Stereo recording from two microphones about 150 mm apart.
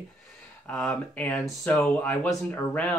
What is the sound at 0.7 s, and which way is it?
Speech, 10° left (ahead or behind).